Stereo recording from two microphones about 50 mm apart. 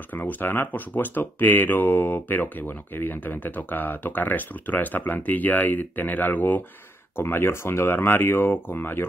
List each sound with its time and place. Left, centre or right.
0.1 s speech: left
7.2 s speech: left